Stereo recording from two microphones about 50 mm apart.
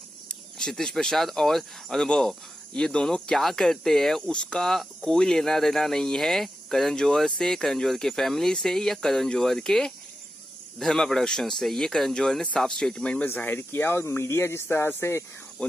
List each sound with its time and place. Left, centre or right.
0.3 s speech: centre
4.3 s speech: centre
12.9 s speech: left
13.2 s speech: left
13.9 s speech: left